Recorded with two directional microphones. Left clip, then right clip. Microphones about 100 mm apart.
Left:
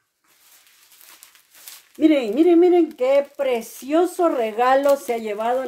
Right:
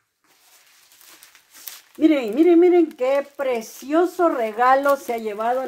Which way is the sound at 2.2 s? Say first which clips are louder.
Right 1 dB; 25° left (ahead or behind).